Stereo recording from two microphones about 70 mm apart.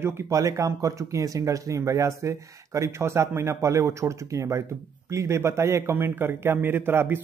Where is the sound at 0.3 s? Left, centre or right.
Right.